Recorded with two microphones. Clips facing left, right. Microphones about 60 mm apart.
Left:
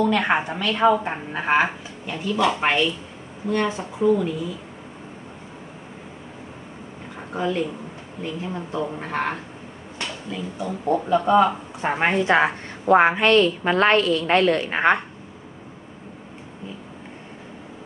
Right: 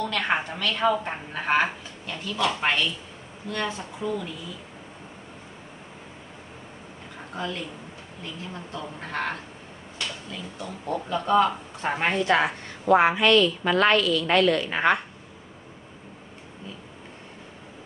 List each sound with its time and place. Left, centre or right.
0.0 s a woman's voice: centre
7.3 s a woman's voice: centre
8.7 s a woman's voice: centre
12.8 s a woman's voice: left